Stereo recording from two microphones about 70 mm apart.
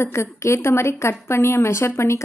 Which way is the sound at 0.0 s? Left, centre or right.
Left.